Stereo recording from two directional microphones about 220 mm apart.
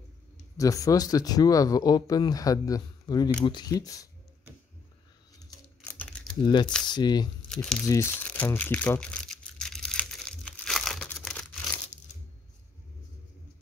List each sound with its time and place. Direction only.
0.6 s speech: 15° left (ahead or behind)
5.9 s crumpling: 5° left (ahead or behind)
6.4 s speech: 20° left (ahead or behind)
7.4 s speech: 5° left (ahead or behind)
7.8 s crumpling: 15° left (ahead or behind)